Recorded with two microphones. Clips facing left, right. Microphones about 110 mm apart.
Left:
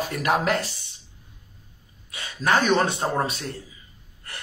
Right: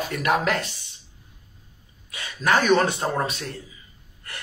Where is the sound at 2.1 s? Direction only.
30° left (ahead or behind).